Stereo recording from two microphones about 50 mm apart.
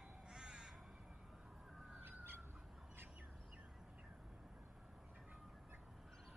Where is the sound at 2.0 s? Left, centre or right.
Right.